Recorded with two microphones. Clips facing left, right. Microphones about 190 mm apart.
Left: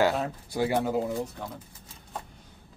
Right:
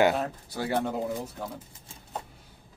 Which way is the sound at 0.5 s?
10° left (ahead or behind).